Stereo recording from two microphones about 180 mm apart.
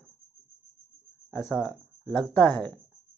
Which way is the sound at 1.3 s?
10° left (ahead or behind).